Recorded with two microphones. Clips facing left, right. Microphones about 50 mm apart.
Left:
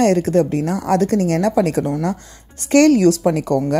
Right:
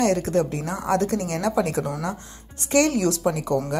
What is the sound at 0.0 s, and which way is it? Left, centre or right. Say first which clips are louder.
Speech: left 6 dB; left.